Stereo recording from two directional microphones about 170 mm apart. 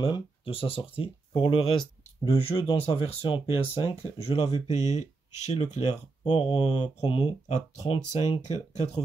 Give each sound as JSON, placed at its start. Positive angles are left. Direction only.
{"t": 0.0, "sound": "speech", "side_deg": 30}
{"t": 6.2, "sound": "speech", "side_deg": 30}